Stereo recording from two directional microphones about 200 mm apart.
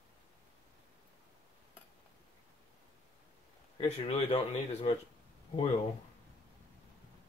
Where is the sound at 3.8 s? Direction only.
30° left (ahead or behind).